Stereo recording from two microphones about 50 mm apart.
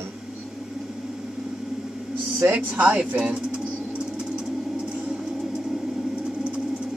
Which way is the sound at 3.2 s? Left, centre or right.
Right.